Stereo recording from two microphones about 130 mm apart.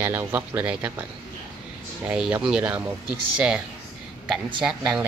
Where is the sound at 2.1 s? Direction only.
10° right (ahead or behind).